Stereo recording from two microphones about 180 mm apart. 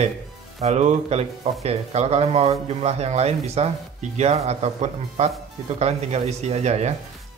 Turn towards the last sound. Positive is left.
turn(degrees=-40)  # may be behind; listen again after turning